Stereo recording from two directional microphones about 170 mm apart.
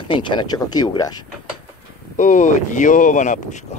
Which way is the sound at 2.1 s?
45° left (ahead or behind).